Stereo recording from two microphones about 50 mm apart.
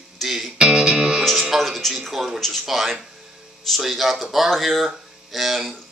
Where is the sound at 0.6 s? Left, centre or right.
Centre.